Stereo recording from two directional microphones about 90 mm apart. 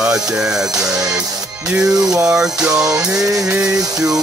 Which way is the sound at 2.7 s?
40° right (ahead or behind).